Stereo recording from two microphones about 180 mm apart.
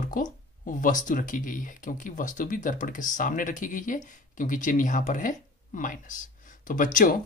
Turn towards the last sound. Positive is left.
turn(degrees=45)  # may be behind; listen again after turning